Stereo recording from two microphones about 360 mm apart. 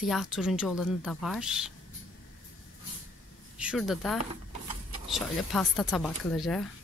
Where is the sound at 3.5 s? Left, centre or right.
Centre.